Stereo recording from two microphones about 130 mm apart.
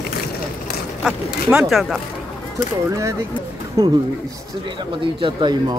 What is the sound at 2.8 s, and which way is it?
Speech, 25° right (ahead or behind).